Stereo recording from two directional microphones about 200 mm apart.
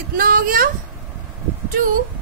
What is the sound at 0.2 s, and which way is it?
Speech, 45° right (ahead or behind).